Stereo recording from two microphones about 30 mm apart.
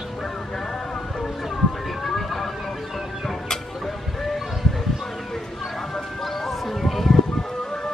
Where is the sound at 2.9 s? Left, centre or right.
Centre.